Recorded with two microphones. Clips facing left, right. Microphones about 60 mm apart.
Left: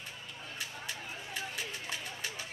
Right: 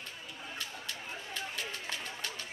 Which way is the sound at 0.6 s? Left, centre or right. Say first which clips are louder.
Left 2 dB; centre.